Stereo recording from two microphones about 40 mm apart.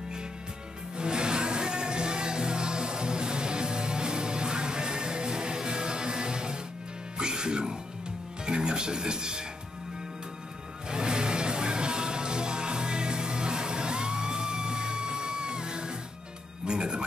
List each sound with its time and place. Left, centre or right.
0.9 s music: centre
10.9 s music: centre